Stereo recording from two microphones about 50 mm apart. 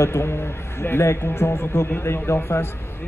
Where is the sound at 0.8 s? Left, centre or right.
Left.